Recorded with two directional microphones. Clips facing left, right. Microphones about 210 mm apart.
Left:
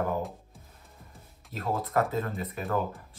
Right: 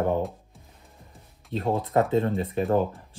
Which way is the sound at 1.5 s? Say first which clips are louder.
Right 5 dB; 30° right (ahead or behind).